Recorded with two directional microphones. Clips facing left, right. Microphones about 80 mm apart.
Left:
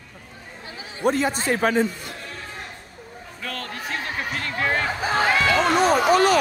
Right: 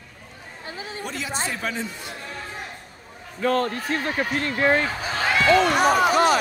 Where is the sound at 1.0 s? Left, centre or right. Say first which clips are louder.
Left 9 dB; left.